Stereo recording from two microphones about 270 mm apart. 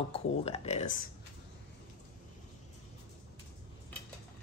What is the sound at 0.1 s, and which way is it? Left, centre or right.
Speech, left.